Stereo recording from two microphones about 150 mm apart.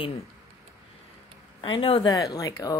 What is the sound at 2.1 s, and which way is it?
Speech, 25° left (ahead or behind).